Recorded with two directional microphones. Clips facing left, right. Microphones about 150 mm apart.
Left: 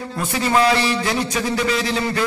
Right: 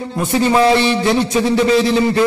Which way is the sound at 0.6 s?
25° right (ahead or behind).